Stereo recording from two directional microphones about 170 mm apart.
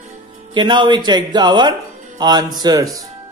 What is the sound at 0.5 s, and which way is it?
Speech, 30° right (ahead or behind).